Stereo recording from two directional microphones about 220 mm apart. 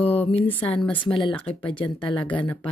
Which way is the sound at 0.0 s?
25° left (ahead or behind).